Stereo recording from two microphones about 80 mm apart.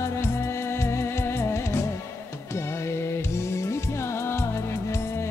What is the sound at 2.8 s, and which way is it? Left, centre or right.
Music, left.